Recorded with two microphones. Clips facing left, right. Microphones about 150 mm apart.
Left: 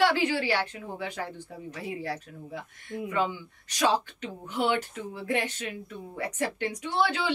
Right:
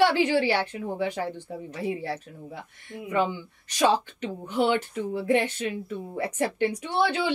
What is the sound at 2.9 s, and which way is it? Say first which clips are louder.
Speech: left 4 dB; 10° right (ahead or behind).